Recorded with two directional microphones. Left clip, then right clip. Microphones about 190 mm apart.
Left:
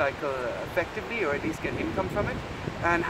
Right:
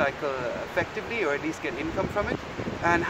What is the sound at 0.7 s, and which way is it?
Speech, centre (ahead or behind).